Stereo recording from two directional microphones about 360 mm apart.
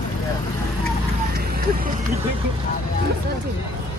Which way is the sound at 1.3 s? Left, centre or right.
Right.